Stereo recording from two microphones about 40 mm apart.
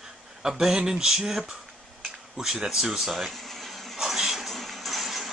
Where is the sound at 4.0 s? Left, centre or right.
Centre.